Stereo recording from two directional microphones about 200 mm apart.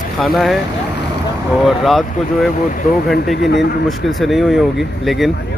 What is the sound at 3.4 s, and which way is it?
Speech, 60° left (ahead or behind).